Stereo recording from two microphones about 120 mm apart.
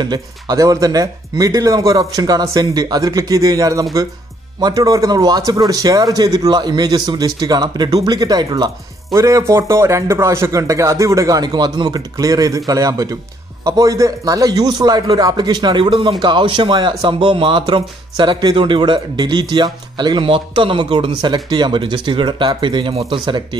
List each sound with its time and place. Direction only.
0.0 s speech: 35° right (ahead or behind)